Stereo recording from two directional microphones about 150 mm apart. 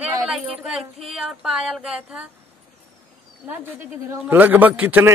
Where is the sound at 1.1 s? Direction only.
5° right (ahead or behind).